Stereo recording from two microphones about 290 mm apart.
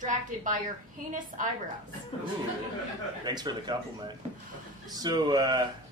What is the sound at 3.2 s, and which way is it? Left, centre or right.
A man's voice, centre.